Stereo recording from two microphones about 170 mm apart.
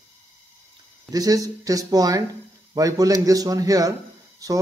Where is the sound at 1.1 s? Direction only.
20° right (ahead or behind).